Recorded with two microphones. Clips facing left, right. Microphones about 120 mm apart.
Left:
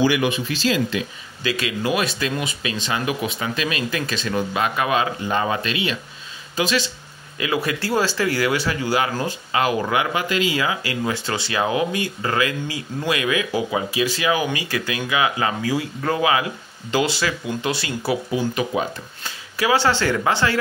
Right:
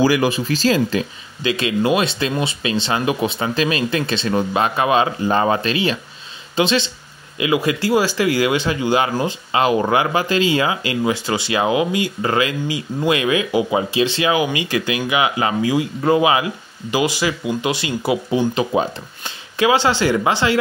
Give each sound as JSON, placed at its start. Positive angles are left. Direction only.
{"t": 0.0, "sound": "speech", "side_deg": -35}
{"t": 1.4, "sound": "speech", "side_deg": -25}